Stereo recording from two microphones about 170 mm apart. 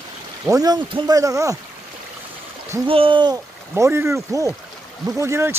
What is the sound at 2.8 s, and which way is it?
Speech, 30° right (ahead or behind).